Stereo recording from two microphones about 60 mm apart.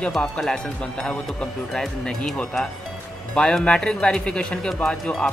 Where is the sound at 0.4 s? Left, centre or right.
Centre.